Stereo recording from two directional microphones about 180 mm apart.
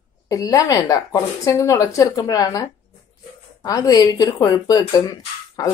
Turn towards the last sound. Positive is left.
turn(degrees=20)  # may be behind; listen again after turning